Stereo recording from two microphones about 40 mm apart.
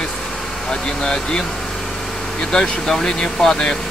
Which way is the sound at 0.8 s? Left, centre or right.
Centre.